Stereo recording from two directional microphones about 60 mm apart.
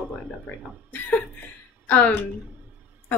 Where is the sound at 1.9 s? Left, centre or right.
Left.